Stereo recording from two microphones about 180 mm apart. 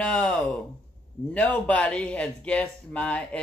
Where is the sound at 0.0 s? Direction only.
5° left (ahead or behind).